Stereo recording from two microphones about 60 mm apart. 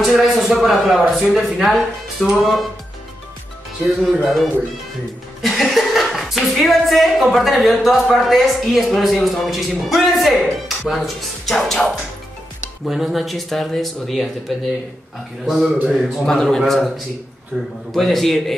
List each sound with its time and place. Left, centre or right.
0.0 s a man's voice: centre
2.2 s music: centre
4.0 s speech: centre
16.3 s speech: centre
17.5 s a man's voice: centre
17.9 s speech: centre